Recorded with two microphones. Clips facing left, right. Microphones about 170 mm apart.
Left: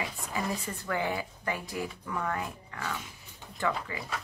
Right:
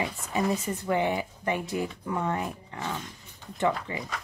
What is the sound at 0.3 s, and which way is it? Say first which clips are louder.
Speech: right 7 dB; 20° right (ahead or behind).